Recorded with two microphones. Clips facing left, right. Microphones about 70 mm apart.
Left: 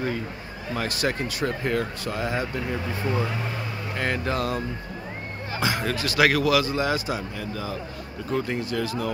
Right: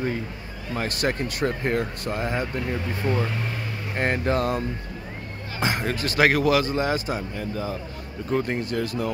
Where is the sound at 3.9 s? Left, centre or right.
Right.